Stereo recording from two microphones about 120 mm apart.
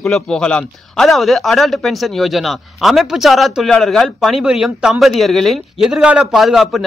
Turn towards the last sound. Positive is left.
turn(degrees=0)  # may be behind; listen again after turning